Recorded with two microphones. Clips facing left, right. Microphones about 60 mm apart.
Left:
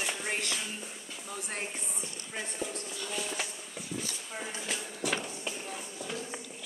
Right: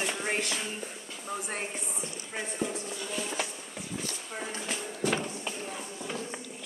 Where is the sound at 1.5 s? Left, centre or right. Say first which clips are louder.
Right 2 dB; centre.